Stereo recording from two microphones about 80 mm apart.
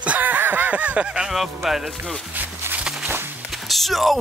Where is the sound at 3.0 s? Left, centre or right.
Right.